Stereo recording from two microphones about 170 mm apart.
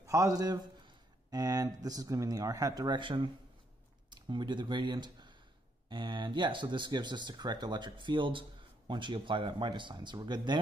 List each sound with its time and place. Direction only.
0.0 s a man's voice: 20° right (ahead or behind)